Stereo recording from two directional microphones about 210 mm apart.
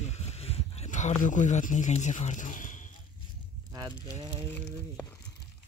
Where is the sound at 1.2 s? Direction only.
35° left (ahead or behind).